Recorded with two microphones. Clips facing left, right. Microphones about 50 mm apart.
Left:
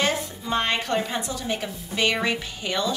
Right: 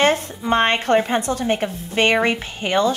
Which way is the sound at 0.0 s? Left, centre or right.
Right.